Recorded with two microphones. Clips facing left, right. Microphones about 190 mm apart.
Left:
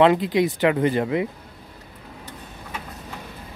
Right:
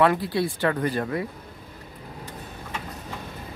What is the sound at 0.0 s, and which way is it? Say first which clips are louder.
Speech: left 4 dB; 20° left (ahead or behind).